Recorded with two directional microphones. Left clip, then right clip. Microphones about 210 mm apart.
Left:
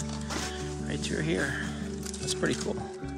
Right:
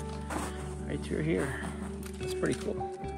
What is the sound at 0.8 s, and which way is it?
Speech, 5° right (ahead or behind).